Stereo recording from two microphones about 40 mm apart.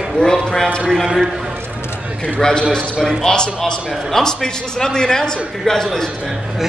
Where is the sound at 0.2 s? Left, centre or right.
Centre.